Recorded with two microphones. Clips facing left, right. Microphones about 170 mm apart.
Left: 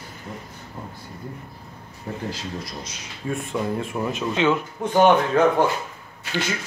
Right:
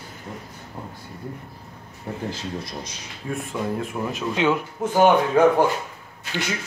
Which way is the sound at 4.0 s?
10° left (ahead or behind).